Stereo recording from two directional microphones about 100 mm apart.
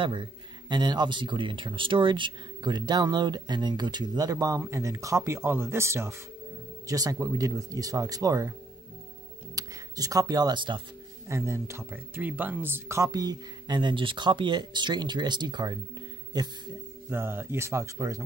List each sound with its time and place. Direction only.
0.0 s speech: 50° right (ahead or behind); by 8.5 s 35° right (ahead or behind)
9.6 s speech: 35° right (ahead or behind)
11.2 s speech: 30° right (ahead or behind)
13.1 s speech: 40° right (ahead or behind)
17.1 s speech: 25° right (ahead or behind)